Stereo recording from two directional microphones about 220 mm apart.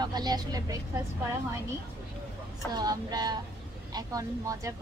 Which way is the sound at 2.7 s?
20° right (ahead or behind).